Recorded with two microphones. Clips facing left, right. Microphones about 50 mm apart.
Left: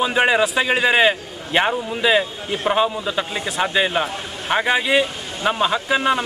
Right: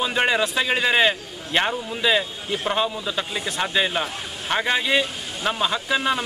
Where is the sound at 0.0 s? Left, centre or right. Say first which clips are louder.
Left 4 dB; centre.